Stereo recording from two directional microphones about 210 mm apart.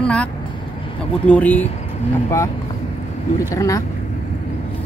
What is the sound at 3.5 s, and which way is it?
Speech, 15° left (ahead or behind).